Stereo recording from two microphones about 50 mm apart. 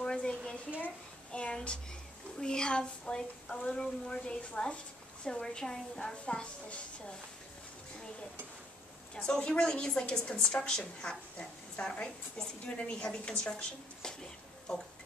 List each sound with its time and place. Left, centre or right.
0.0 s a sound: centre
1.3 s a woman's voice: left
9.1 s a woman's voice: centre